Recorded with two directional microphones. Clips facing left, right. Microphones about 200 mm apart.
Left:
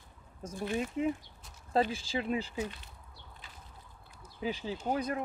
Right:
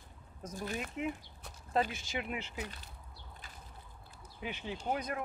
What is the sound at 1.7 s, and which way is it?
Speech, 30° left (ahead or behind).